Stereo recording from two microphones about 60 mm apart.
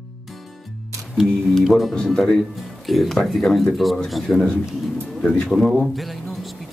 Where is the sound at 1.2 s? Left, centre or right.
Centre.